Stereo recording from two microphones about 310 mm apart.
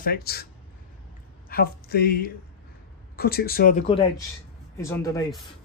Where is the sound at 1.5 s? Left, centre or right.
Left.